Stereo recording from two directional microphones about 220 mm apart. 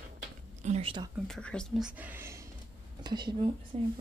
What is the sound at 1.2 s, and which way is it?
Speech, 5° left (ahead or behind).